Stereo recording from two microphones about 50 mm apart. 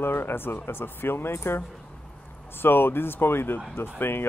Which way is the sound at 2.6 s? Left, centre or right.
Left.